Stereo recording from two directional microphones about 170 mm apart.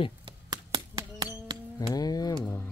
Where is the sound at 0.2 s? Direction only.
25° right (ahead or behind).